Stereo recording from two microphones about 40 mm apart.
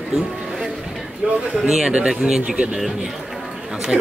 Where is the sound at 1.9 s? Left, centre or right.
Centre.